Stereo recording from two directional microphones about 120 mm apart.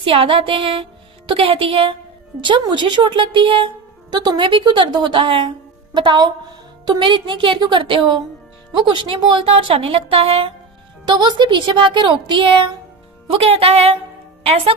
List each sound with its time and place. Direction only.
0.0 s a woman's voice: 50° right (ahead or behind)
11.1 s a woman's voice: 40° right (ahead or behind); by 14.8 s 55° right (ahead or behind)